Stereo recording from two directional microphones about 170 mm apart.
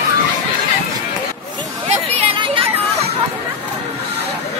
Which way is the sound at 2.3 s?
30° right (ahead or behind).